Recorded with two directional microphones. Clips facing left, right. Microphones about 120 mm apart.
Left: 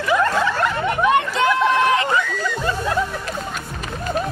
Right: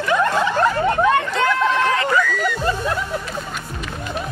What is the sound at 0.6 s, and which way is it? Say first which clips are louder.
Snicker: right 3 dB; 30° right (ahead or behind).